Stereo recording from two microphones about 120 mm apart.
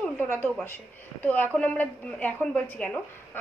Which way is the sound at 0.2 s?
15° left (ahead or behind).